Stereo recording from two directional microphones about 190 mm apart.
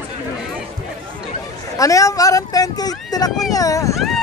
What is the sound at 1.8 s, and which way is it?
A man's voice, 15° left (ahead or behind).